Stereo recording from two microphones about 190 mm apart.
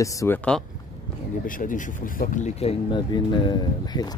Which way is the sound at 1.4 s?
45° left (ahead or behind).